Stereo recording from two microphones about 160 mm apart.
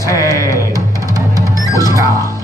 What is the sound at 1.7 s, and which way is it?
Speech, 20° right (ahead or behind).